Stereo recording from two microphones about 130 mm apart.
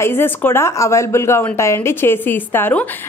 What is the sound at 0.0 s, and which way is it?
Speech, 15° left (ahead or behind).